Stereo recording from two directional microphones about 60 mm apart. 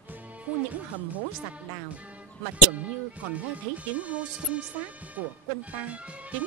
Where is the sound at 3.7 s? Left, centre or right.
Right.